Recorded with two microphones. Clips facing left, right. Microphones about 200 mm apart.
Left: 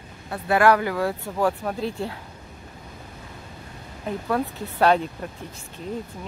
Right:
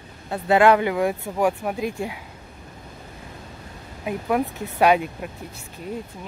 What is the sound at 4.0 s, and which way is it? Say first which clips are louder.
Speech: right 2 dB; 10° right (ahead or behind).